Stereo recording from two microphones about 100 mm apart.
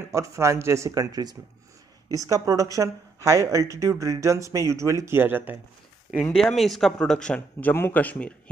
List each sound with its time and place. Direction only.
0.1 s speech: 30° right (ahead or behind)
6.3 s speech: centre (ahead or behind)